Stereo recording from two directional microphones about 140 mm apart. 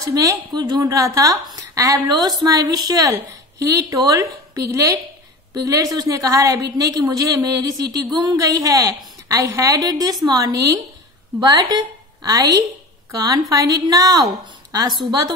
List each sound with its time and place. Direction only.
0.0 s a woman's voice: 25° right (ahead or behind)